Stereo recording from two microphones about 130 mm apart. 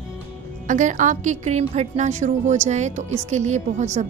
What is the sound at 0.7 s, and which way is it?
A woman's voice, 75° right (ahead or behind).